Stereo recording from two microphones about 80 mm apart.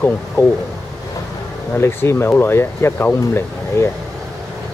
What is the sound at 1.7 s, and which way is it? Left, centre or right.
Speech, left.